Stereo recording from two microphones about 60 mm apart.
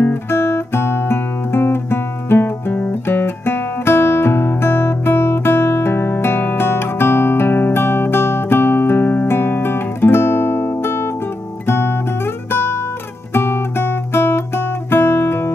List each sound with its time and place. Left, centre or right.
0.0 s guitar: left
11.6 s music: left
12.4 s guitar: left